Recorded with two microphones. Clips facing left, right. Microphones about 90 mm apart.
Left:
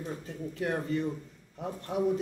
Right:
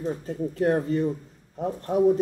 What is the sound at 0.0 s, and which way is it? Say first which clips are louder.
Speech: right 9 dB; 40° right (ahead or behind).